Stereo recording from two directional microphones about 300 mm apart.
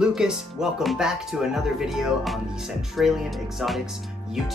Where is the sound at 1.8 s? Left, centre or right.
Centre.